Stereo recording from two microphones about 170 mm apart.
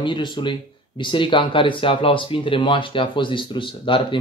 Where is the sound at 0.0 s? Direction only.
30° left (ahead or behind).